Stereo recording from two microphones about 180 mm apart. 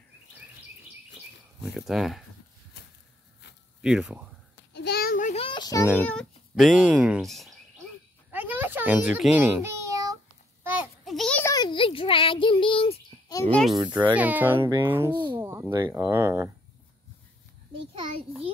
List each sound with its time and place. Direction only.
1.6 s speech: centre (ahead or behind)
2.8 s a sound: 65° left (ahead or behind)
3.8 s speech: 5° right (ahead or behind)
4.7 s a sound: 65° left (ahead or behind)
5.3 s child singing: 30° left (ahead or behind)
6.0 s speech: centre (ahead or behind)
8.3 s a sound: 10° right (ahead or behind)
10.6 s a sound: 10° right (ahead or behind)
11.4 s child singing: 20° left (ahead or behind)
13.5 s speech: 5° left (ahead or behind)
13.7 s a child's voice: 25° right (ahead or behind)
14.1 s speech: 10° right (ahead or behind)